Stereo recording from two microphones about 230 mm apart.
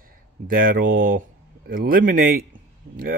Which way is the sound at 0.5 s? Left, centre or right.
Right.